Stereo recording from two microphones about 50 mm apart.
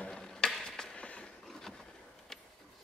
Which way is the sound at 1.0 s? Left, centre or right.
Left.